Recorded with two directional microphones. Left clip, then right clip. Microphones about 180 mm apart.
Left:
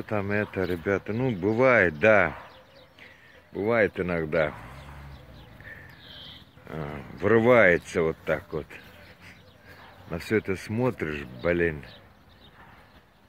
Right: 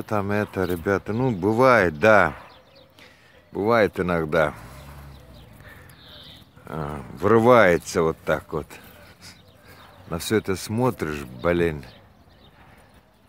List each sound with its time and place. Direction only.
0.0 s speech: 15° right (ahead or behind)
3.5 s speech: 30° right (ahead or behind)
6.7 s speech: 20° right (ahead or behind)
8.5 s bird: 20° right (ahead or behind)
10.1 s speech: 15° right (ahead or behind)